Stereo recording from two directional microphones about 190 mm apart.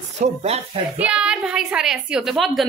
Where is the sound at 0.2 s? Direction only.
35° right (ahead or behind).